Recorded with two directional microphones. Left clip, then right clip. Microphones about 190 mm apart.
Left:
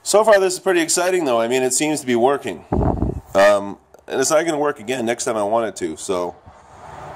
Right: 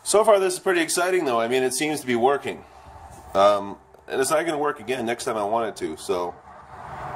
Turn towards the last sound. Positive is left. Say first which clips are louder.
# left 4 dB
turn(degrees=40)  # may be behind; listen again after turning